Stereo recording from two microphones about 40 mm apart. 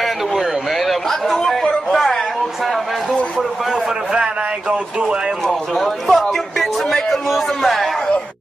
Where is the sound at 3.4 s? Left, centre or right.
Centre.